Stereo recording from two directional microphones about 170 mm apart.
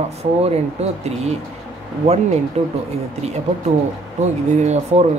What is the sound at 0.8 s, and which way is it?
Speech, 40° right (ahead or behind).